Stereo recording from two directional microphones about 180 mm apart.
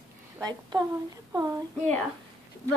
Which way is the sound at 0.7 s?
25° right (ahead or behind).